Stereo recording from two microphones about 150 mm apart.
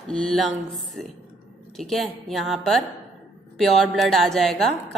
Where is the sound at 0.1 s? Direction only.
5° left (ahead or behind).